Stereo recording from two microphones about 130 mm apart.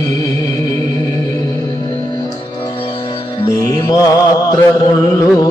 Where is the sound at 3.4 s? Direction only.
30° left (ahead or behind).